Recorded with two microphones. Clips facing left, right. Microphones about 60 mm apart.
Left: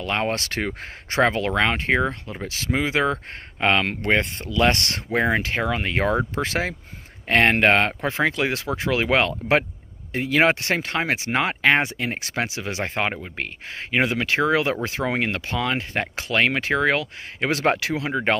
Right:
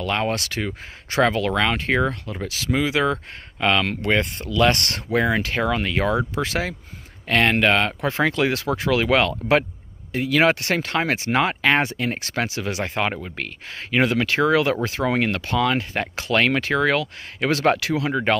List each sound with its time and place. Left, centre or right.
0.0 s speech: left
1.1 s speech: left